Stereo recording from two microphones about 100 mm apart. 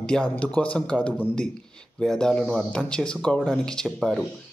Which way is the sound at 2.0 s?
5° left (ahead or behind).